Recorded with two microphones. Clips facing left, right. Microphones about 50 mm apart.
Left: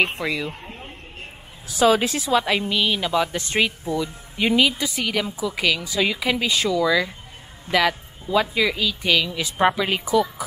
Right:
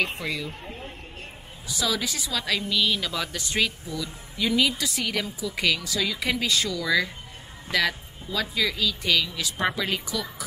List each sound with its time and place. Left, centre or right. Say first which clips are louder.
1.7 s speech: left 10 dB; left; by 3.3 s centre
3.3 s speech: left 4 dB; left
4.8 s speech: left 4 dB; centre
5.5 s a woman's voice: left 2 dB; centre
5.8 s speech: left 5 dB; centre